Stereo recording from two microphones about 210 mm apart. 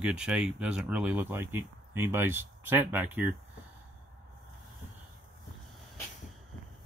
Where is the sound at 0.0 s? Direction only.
5° right (ahead or behind).